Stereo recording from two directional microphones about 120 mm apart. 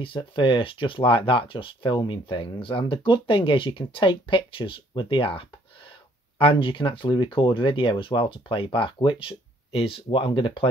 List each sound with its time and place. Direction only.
0.0 s speech: 45° left (ahead or behind)